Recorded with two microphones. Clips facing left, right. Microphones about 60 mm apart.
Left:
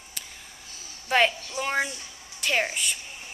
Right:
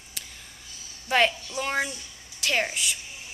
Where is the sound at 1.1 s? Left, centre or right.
Centre.